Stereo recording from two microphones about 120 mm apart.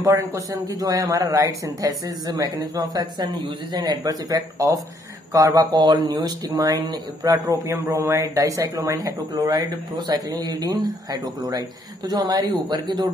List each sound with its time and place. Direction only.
0.0 s a man's voice: 25° right (ahead or behind)